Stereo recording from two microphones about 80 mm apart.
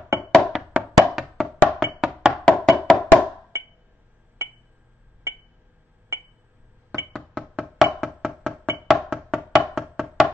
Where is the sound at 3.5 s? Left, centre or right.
Right.